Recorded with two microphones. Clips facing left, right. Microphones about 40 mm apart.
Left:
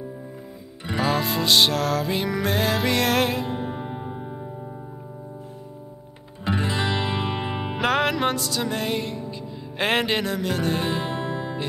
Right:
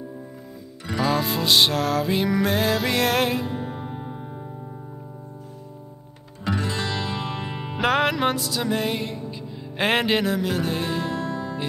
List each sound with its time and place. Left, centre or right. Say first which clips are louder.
1.0 s music: even; centre
3.4 s music: left 1 dB; left
6.4 s music: left 2 dB; left
7.7 s music: right 1 dB; centre
11.1 s music: even; left